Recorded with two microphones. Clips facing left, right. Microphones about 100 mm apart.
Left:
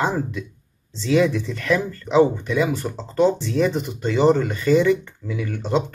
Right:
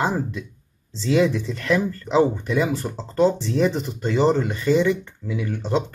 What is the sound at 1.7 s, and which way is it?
Speech, centre (ahead or behind).